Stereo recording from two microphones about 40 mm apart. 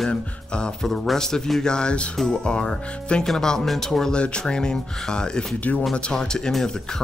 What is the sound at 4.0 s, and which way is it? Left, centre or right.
Speech, left.